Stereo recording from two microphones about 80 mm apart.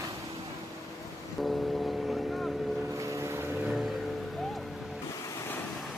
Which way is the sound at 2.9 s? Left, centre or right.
Right.